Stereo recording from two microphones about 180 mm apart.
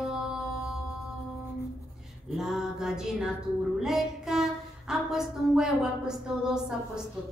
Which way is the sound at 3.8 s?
Centre (ahead or behind).